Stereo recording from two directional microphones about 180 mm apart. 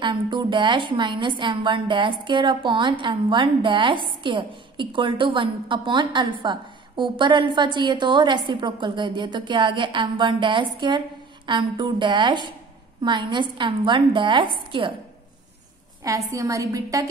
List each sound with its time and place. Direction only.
0.0 s a woman's voice: 25° right (ahead or behind)
16.0 s a woman's voice: 20° right (ahead or behind)